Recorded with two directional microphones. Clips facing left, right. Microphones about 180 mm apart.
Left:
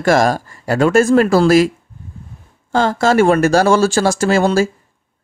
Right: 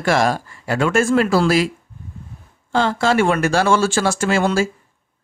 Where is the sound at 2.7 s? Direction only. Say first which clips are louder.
Left 3 dB; 45° left (ahead or behind).